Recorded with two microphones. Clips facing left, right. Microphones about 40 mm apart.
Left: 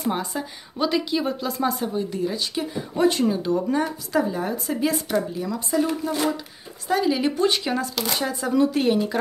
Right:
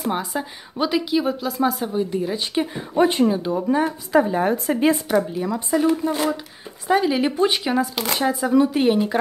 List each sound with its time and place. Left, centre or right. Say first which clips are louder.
0.4 s a woman's voice: right 1 dB; centre
1.9 s a woman's voice: right 3 dB; centre
2.3 s speech: right 3 dB; right
4.9 s a woman's voice: right 3 dB; centre
6.9 s a woman's voice: right 3 dB; centre
8.3 s a woman's voice: right 4 dB; centre